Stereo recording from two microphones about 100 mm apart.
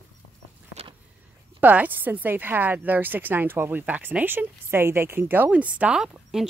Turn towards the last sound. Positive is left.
turn(degrees=-5)  # may be behind; listen again after turning